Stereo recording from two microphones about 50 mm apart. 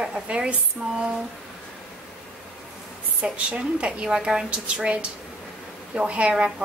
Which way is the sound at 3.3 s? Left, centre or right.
Right.